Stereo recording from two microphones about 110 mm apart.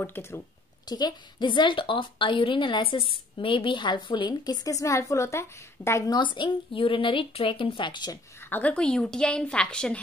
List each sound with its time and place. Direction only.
0.0 s speech: 20° left (ahead or behind)
0.8 s a woman's voice: 40° left (ahead or behind)
6.0 s a woman's voice: 45° left (ahead or behind)
8.4 s a woman's voice: 15° left (ahead or behind)